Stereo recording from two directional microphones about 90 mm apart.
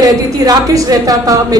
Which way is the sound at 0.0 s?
40° right (ahead or behind).